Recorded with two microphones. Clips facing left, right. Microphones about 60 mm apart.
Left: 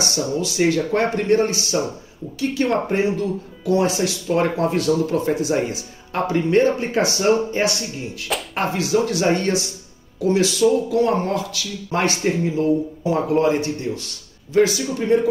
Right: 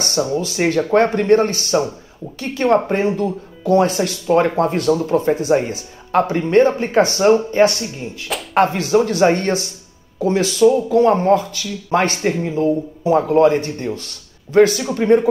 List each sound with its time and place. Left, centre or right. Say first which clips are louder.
0.0 s a man's voice: right 3 dB; right
5.1 s speech: right 4 dB; right
13.0 s speech: right 8 dB; right
13.4 s a man's voice: right 5 dB; right